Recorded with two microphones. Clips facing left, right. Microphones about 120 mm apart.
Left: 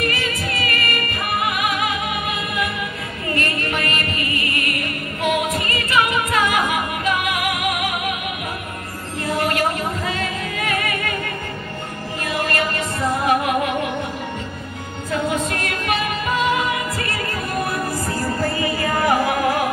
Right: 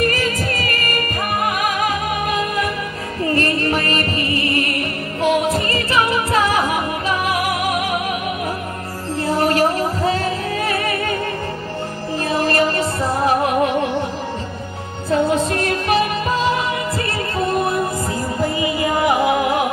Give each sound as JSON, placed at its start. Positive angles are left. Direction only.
{"t": 0.0, "sound": "music", "side_deg": -40}
{"t": 9.2, "sound": "music", "side_deg": -30}
{"t": 12.3, "sound": "music", "side_deg": -30}
{"t": 15.0, "sound": "music", "side_deg": -30}